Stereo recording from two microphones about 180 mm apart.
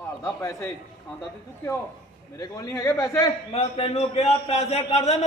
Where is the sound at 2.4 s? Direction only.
20° left (ahead or behind).